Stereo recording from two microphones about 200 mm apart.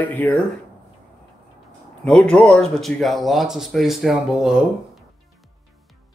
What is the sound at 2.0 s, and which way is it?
Speech, 5° left (ahead or behind).